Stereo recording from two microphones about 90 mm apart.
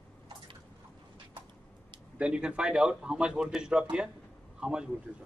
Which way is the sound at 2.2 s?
10° right (ahead or behind).